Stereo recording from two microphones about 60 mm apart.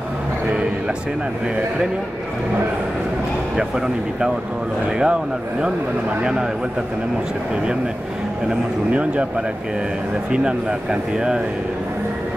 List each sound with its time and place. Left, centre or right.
3.5 s speech: centre
8.5 s speech: right
10.3 s speech: centre